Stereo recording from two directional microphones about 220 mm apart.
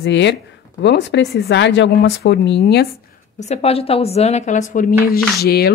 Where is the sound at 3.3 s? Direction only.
30° left (ahead or behind); by 5.7 s 45° left (ahead or behind).